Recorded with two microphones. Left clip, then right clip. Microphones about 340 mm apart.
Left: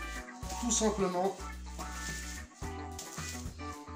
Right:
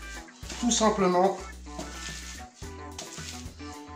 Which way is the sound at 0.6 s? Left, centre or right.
Right.